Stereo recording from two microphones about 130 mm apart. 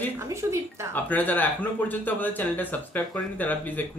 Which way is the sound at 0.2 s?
20° right (ahead or behind).